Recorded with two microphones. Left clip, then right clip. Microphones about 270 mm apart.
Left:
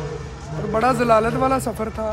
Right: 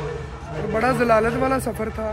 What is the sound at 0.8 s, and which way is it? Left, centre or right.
Speech, centre.